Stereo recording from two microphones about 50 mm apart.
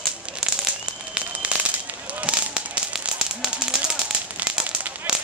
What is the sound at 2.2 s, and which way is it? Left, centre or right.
Firecracker, centre.